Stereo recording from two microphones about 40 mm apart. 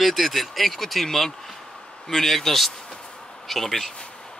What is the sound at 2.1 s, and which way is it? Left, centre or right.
Speech, centre.